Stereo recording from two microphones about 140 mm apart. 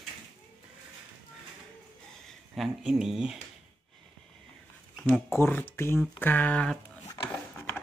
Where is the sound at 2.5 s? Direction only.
5° right (ahead or behind).